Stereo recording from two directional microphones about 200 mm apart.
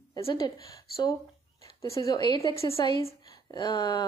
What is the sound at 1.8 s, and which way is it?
A woman's voice, 15° left (ahead or behind).